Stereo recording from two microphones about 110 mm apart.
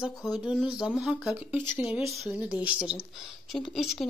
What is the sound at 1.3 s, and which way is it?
Speech, 20° right (ahead or behind).